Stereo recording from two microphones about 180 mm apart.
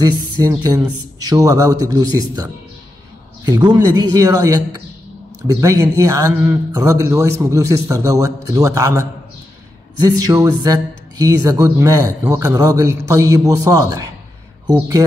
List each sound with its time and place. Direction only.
0.0 s speech: 20° right (ahead or behind)